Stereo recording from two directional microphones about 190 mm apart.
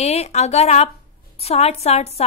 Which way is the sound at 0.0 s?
35° left (ahead or behind).